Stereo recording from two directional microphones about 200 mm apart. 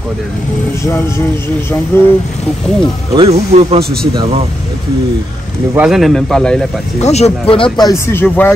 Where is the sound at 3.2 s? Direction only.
30° right (ahead or behind).